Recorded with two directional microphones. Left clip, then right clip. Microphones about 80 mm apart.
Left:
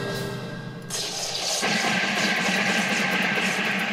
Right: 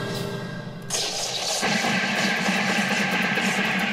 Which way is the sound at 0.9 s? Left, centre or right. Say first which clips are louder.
Right 3 dB; right.